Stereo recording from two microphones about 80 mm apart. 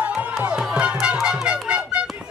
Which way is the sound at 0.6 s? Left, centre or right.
Centre.